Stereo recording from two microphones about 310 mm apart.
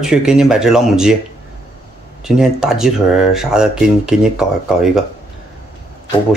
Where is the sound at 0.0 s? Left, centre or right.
Centre.